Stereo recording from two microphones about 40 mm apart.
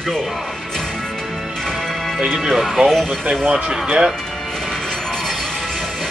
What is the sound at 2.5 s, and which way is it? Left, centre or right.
Speech, centre.